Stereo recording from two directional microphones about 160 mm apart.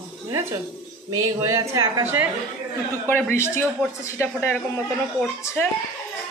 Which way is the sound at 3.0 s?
15° left (ahead or behind).